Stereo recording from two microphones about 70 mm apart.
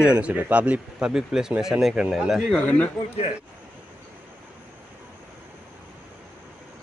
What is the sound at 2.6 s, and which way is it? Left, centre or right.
Speech, centre.